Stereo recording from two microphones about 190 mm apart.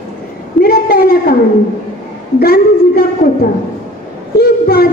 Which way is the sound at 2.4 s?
55° left (ahead or behind).